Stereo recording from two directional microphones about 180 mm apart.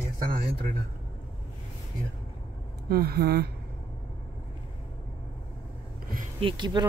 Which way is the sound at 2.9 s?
60° right (ahead or behind).